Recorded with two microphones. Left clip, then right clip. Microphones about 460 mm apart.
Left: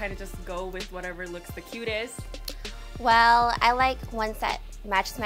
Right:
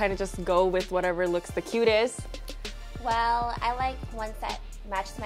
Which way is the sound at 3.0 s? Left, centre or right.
Left.